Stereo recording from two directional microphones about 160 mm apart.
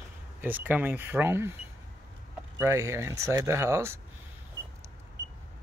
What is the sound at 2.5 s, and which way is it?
Speech, 20° right (ahead or behind).